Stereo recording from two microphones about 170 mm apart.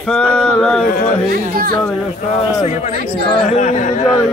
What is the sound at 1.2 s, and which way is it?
Speech, 60° right (ahead or behind).